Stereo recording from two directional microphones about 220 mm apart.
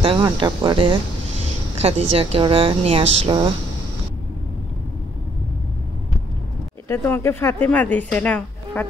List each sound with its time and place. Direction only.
0.0 s a woman's voice: 20° right (ahead or behind)
6.9 s a woman's voice: 10° left (ahead or behind)